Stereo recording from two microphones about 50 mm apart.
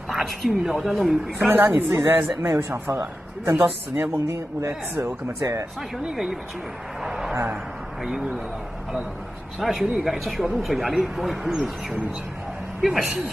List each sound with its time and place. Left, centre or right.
0.1 s speech: centre
1.5 s a man's voice: right
2.5 s speech: right
3.9 s a man's voice: right
4.3 s a man's voice: right
7.0 s a sound: centre
8.0 s a man's voice: centre
9.6 s speech: centre